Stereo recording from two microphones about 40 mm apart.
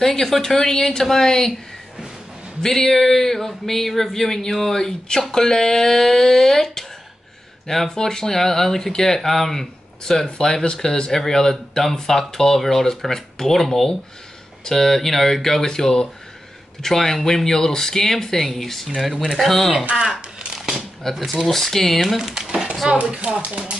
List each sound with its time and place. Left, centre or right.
0.0 s speech: centre
2.6 s speech: centre
20.1 s crumpling: centre
21.0 s speech: centre
22.0 s a sound: centre
22.8 s speech: right